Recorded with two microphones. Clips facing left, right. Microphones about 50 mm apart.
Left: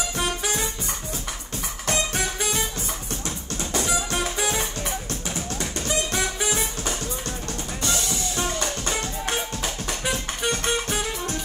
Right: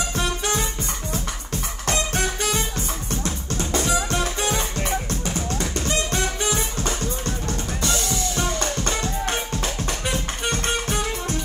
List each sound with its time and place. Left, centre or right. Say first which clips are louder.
0.1 s music: right 2 dB; right
1.9 s music: right 2 dB; right
7.8 s drum kit: right 2 dB; right
9.8 s music: right 1 dB; right